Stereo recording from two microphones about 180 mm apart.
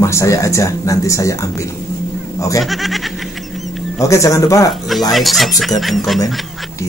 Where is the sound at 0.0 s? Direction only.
15° left (ahead or behind).